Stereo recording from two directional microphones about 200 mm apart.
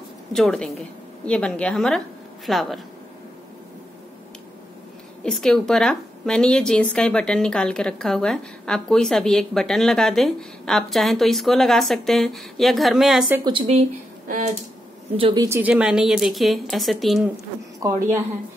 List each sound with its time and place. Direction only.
0.3 s a woman's voice: centre (ahead or behind)
5.2 s a woman's voice: centre (ahead or behind)
13.4 s speech: 25° right (ahead or behind)
15.1 s a woman's voice: 25° right (ahead or behind)
15.4 s a woman's voice: 10° right (ahead or behind)
17.7 s a woman's voice: 15° right (ahead or behind)